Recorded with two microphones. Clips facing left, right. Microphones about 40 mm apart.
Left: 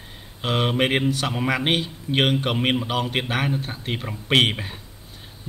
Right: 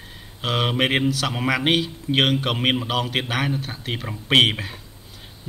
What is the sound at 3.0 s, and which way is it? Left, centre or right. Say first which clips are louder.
Speech: even; centre.